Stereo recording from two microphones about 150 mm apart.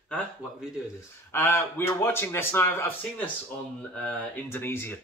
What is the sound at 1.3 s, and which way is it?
Speech, 15° left (ahead or behind).